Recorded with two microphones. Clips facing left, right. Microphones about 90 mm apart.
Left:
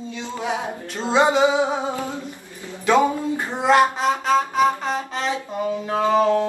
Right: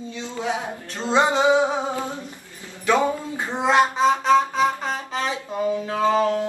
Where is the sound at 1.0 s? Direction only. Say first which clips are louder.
Left 2 dB; 15° left (ahead or behind).